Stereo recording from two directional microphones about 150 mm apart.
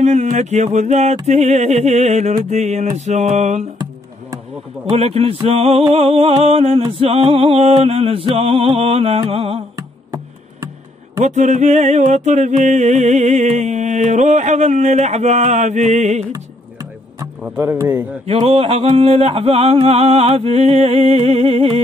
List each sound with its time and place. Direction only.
0.0 s music: 50° right (ahead or behind)
4.9 s a sound: 40° right (ahead or behind)
9.8 s music: 25° right (ahead or behind)
11.1 s music: 50° right (ahead or behind)
16.3 s music: 20° right (ahead or behind)
17.4 s speech: 15° right (ahead or behind)
18.2 s a sound: 40° right (ahead or behind)